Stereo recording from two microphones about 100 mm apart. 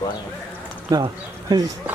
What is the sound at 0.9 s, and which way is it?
Speech, 40° right (ahead or behind).